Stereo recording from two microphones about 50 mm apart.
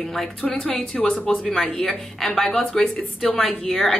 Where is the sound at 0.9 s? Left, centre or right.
Left.